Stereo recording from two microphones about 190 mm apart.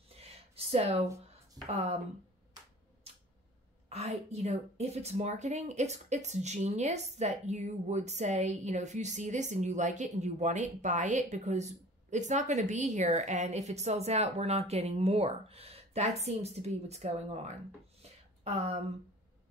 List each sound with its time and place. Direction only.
0.1 s a sound: 30° right (ahead or behind)
1.7 s speech: 35° right (ahead or behind)
3.9 s speech: 35° right (ahead or behind)